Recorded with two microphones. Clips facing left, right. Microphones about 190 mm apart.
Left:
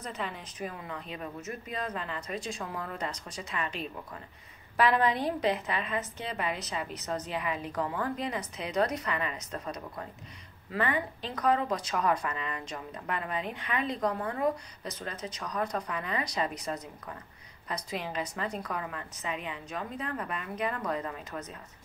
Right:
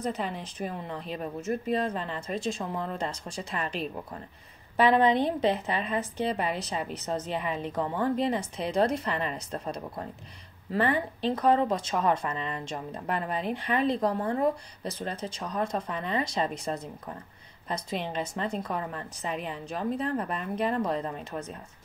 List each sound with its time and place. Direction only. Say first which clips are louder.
0.0 s speech: right 6 dB; 35° right (ahead or behind)
4.7 s speech: right 4 dB; 25° right (ahead or behind)